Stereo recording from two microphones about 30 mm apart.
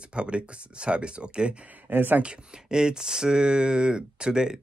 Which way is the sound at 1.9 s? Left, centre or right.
Right.